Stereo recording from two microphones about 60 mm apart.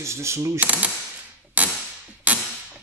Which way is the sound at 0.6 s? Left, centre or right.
Right.